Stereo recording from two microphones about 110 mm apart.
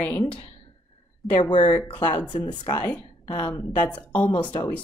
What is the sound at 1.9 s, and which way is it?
Speech, 45° left (ahead or behind).